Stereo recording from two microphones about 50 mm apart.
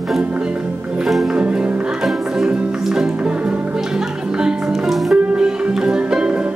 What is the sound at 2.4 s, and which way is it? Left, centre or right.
Music, centre.